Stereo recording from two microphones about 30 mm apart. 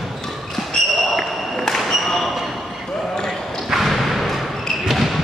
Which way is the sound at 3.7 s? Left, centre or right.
Centre.